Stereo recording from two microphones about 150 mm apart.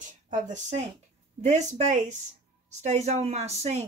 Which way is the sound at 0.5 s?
50° right (ahead or behind).